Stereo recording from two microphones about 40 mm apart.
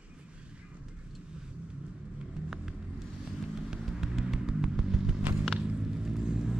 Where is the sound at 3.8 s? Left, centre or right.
Centre.